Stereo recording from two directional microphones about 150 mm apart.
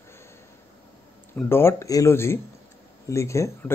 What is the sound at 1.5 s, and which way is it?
Speech, 15° left (ahead or behind).